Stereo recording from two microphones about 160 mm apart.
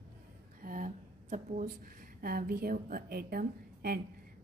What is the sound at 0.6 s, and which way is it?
A woman's voice, 55° right (ahead or behind).